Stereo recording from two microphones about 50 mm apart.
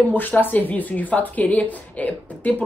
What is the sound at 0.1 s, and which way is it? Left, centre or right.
A woman's voice, left.